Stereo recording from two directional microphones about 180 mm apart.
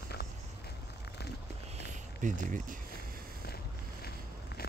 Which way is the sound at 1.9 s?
45° right (ahead or behind).